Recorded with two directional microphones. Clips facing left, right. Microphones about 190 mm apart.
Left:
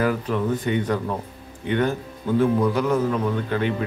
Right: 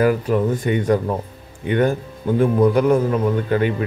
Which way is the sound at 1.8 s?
50° right (ahead or behind).